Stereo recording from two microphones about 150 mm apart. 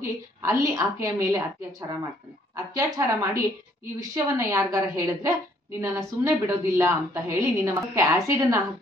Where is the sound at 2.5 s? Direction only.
20° right (ahead or behind).